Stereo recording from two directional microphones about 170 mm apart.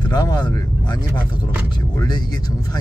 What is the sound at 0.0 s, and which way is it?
Vehicle, 25° left (ahead or behind).